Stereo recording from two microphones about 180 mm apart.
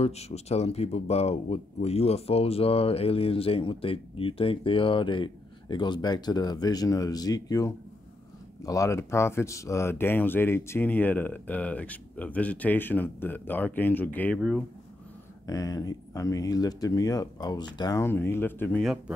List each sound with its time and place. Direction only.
0.0 s speech: 35° left (ahead or behind); by 14.6 s 5° left (ahead or behind)
15.4 s speech: 20° left (ahead or behind)
18.8 s a man's voice: centre (ahead or behind)